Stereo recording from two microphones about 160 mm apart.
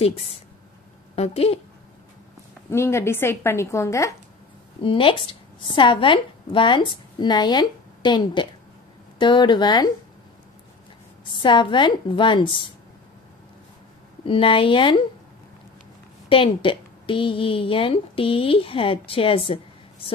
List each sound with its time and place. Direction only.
0.0 s a woman's voice: 40° left (ahead or behind)
2.7 s a woman's voice: 15° left (ahead or behind)
4.8 s a woman's voice: 35° left (ahead or behind)
11.3 s a woman's voice: 30° left (ahead or behind)
14.2 s a woman's voice: 35° left (ahead or behind)
16.3 s a woman's voice: 35° left (ahead or behind)